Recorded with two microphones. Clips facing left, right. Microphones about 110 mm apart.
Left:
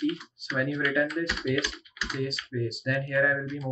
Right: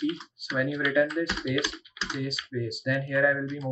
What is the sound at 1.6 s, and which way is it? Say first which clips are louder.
Typing: right 2 dB; 30° right (ahead or behind).